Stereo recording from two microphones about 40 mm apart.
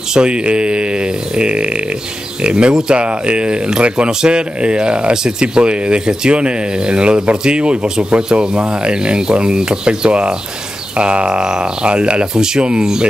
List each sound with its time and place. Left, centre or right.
0.1 s speech: right